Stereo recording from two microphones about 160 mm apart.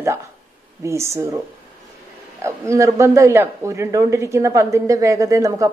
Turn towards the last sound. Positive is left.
turn(degrees=-20)  # may be behind; listen again after turning